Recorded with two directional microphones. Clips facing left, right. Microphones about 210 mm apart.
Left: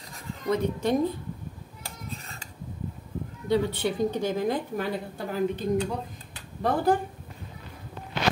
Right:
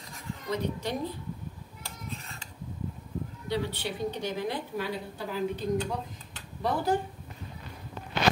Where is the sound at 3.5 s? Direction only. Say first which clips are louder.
Left 7 dB; 50° left (ahead or behind).